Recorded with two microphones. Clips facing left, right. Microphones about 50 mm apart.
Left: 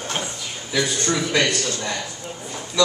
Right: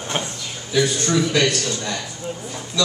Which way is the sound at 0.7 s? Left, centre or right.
Centre.